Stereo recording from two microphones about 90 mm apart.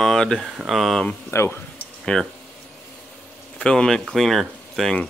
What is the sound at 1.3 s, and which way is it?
Speech, 30° left (ahead or behind).